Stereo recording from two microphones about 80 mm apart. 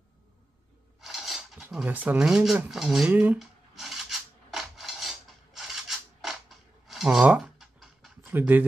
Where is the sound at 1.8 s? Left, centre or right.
Right.